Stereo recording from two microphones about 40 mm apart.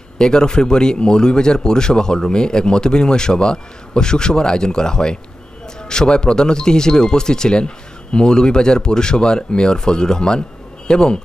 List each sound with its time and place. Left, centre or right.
0.2 s speech: centre